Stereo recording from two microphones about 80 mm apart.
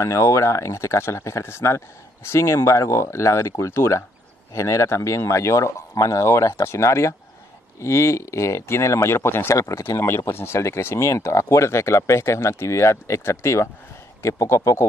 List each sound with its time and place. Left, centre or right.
0.0 s speech: left
9.6 s speech: left
9.9 s speech: left